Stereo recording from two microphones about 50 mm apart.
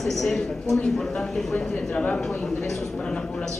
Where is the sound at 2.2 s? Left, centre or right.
Centre.